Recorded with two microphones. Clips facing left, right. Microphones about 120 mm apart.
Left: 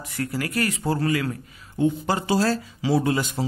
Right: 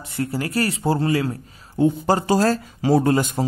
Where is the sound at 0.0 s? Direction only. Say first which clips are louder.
Right 3 dB; 25° right (ahead or behind).